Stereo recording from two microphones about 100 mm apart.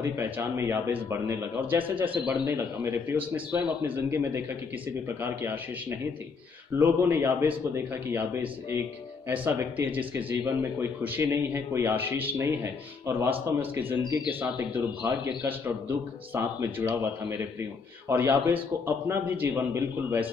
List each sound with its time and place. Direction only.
0.0 s speech: 20° right (ahead or behind)